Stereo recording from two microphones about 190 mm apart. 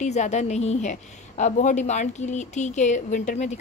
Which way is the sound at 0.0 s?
35° left (ahead or behind).